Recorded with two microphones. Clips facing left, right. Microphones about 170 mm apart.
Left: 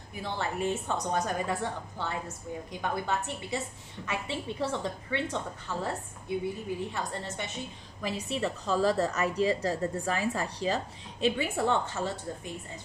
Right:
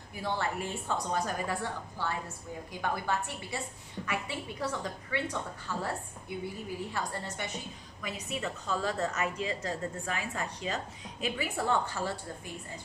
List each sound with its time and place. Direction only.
0.2 s a woman's voice: 20° left (ahead or behind)
6.9 s a woman's voice: 20° left (ahead or behind)